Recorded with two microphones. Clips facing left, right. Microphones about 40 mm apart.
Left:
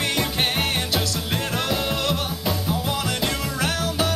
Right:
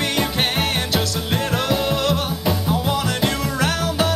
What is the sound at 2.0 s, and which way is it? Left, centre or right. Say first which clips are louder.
Music: right 4 dB; right.